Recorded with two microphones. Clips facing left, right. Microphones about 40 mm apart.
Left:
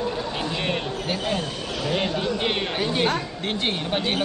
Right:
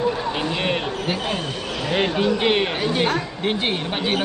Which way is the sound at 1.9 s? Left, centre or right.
Right.